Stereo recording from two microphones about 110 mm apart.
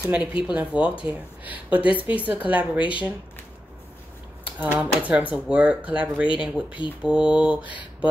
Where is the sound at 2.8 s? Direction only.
50° left (ahead or behind).